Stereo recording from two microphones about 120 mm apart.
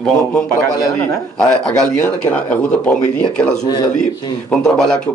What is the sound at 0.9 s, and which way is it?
A man's voice, 10° left (ahead or behind).